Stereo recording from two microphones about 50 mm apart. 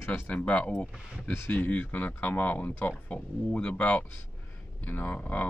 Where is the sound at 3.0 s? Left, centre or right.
Left.